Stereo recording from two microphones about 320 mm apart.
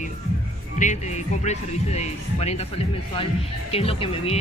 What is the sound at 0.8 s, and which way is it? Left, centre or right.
Speech, left.